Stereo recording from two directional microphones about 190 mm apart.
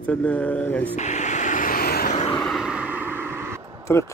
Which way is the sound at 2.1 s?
35° left (ahead or behind).